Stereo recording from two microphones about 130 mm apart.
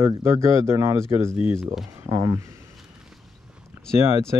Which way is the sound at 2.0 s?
20° right (ahead or behind).